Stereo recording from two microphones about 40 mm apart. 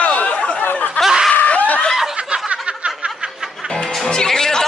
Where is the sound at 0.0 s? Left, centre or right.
Left.